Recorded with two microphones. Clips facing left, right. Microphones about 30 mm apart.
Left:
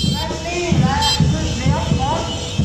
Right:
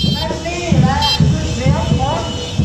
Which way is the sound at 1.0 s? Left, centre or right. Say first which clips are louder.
Right 2 dB; centre.